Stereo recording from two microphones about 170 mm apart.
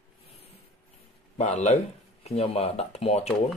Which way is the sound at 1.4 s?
40° left (ahead or behind).